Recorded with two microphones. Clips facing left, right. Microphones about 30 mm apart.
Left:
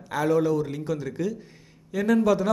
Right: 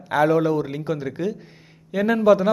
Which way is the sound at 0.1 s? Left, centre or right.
Right.